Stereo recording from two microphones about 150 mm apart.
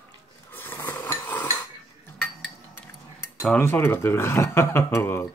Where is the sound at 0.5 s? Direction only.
15° left (ahead or behind).